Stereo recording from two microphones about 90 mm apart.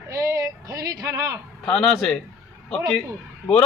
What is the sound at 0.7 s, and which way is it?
Music, 35° right (ahead or behind).